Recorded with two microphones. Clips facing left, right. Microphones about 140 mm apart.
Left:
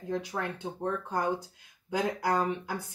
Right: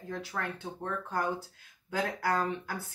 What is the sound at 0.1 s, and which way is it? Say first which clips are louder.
A woman's voice: left 4 dB; 20° left (ahead or behind).